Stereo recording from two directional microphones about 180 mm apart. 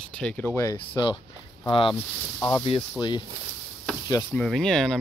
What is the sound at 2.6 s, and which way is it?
Speech, 25° left (ahead or behind).